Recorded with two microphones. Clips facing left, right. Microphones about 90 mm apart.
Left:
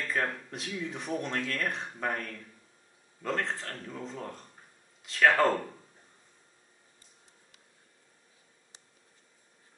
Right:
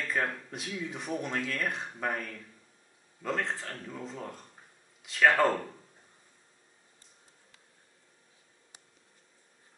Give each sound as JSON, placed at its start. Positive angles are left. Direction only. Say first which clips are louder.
{"t": 0.0, "sound": "speech", "louder": "even", "side_deg": 0}